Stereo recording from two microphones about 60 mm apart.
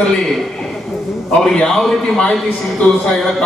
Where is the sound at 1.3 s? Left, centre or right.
Centre.